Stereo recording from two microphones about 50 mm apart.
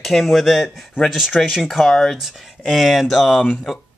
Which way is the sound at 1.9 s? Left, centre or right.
Centre.